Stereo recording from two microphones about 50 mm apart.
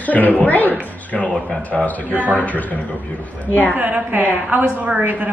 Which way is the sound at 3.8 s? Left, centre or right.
Right.